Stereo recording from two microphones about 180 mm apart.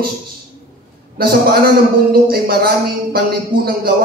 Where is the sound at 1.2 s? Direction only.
55° right (ahead or behind).